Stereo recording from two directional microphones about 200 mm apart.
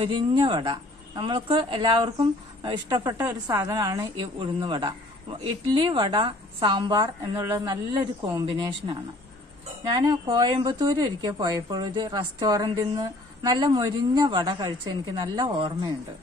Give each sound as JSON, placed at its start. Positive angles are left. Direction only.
{"t": 0.0, "sound": "a woman's voice", "side_deg": -25}